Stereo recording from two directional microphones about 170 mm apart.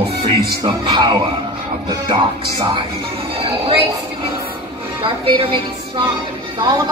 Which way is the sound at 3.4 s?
30° right (ahead or behind).